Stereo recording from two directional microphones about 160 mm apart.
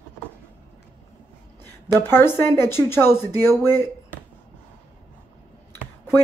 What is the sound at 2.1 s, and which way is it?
Speech, 15° left (ahead or behind).